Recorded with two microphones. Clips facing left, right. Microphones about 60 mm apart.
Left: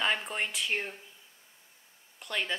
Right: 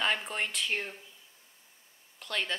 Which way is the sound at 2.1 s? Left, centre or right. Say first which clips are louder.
Even; centre.